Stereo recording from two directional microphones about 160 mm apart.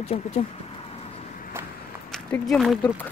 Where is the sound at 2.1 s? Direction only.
Centre (ahead or behind).